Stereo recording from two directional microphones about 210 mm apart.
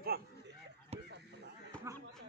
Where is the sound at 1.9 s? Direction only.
15° right (ahead or behind).